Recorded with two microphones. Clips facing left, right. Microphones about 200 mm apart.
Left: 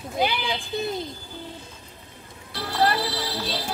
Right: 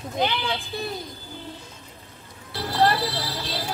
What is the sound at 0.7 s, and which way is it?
Speech, 20° left (ahead or behind).